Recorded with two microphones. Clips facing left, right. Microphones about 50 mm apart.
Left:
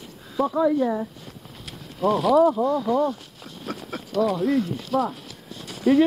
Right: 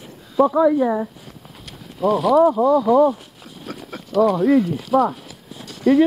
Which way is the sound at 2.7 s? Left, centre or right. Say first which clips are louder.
Right 7 dB; centre.